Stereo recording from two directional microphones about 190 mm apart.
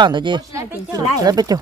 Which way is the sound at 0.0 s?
25° right (ahead or behind).